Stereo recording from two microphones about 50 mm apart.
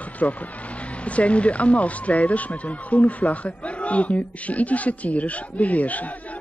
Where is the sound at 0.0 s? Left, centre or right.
Left.